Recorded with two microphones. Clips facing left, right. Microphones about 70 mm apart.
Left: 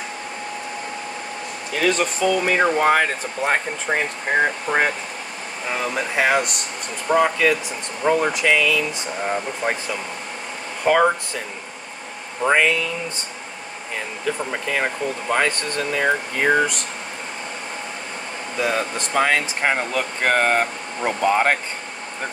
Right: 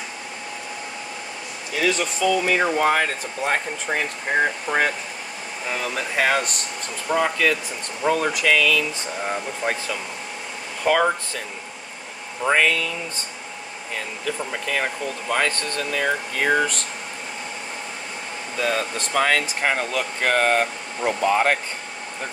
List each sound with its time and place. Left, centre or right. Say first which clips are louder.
1.8 s speech: left 2 dB; left
4.3 s speech: left 2 dB; centre
10.9 s speech: left 2 dB; left
12.4 s speech: left 2 dB; centre
14.2 s speech: left 3 dB; left
18.6 s speech: left 1 dB; centre